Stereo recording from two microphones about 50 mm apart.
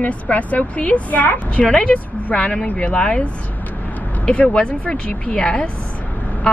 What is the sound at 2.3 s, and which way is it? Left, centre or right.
Speech, centre.